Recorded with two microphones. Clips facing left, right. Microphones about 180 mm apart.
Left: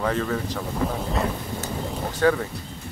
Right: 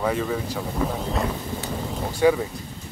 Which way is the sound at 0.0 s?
10° right (ahead or behind).